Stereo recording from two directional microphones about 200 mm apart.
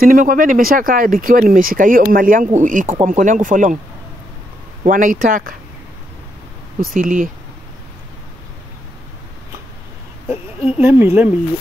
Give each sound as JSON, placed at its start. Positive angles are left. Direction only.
{"t": 0.0, "sound": "speech", "side_deg": -45}
{"t": 4.8, "sound": "speech", "side_deg": -45}
{"t": 6.8, "sound": "speech", "side_deg": -40}
{"t": 10.2, "sound": "speech", "side_deg": -10}